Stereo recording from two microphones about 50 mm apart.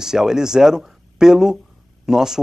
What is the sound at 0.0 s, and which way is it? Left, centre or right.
Speech, centre.